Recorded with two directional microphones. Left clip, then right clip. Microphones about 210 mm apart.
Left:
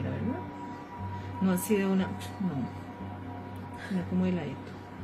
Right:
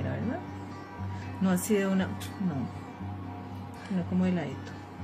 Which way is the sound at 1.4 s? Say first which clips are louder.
Right 1 dB; 40° right (ahead or behind).